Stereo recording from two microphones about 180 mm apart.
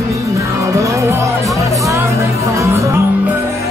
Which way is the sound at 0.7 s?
15° right (ahead or behind).